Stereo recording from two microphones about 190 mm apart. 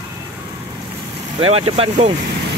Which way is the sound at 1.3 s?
30° right (ahead or behind).